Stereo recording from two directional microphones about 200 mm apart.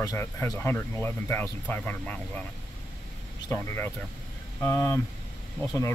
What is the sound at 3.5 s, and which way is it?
Speech, 15° left (ahead or behind).